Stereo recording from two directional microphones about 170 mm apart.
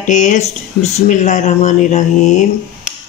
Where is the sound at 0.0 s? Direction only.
45° left (ahead or behind).